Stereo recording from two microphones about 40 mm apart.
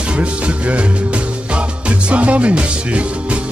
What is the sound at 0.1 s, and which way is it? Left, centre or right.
Music, right.